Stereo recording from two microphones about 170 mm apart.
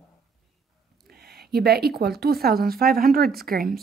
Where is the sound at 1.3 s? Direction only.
70° right (ahead or behind).